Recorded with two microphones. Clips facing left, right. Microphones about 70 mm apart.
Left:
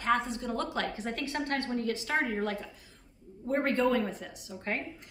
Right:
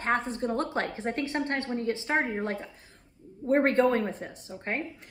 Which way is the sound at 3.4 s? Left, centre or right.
Right.